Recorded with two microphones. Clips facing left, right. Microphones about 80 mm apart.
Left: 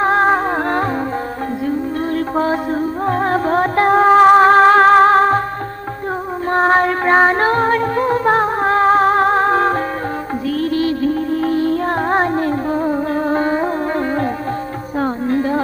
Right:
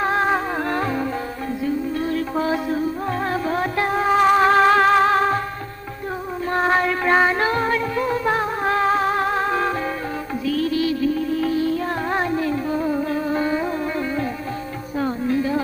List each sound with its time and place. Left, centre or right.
0.0 s music: left
2.0 s music: left
6.5 s music: left